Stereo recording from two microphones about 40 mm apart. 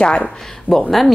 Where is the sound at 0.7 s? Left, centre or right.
Right.